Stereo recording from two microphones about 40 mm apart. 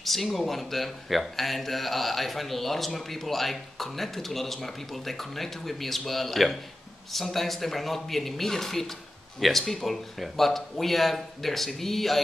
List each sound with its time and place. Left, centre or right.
0.0 s a man's voice: centre